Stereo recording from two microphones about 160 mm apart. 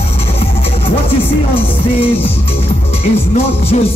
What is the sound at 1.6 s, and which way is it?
Music, 35° left (ahead or behind).